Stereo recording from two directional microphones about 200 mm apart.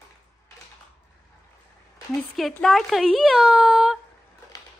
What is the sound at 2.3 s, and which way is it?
Speech, centre (ahead or behind).